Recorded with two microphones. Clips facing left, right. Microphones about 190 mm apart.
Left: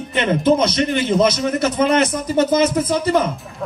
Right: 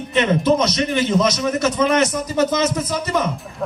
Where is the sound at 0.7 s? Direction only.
30° left (ahead or behind).